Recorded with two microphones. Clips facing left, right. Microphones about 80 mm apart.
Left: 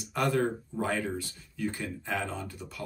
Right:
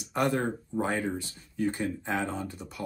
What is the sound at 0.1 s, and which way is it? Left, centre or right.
Speech, right.